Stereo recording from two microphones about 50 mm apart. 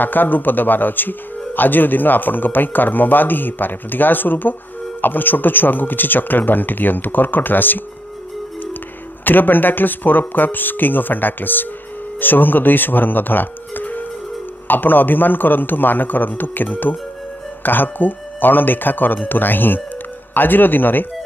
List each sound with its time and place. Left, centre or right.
0.0 s speech: left
9.2 s speech: left